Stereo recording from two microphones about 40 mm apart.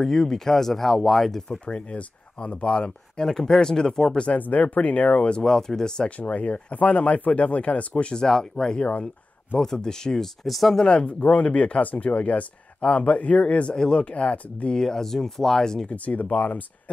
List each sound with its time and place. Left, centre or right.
0.0 s speech: centre
1.7 s speech: left
3.3 s speech: centre
4.4 s speech: left
5.4 s speech: centre
6.0 s speech: left
8.2 s speech: centre
10.4 s speech: centre
10.9 s speech: left
14.8 s speech: centre
15.9 s speech: left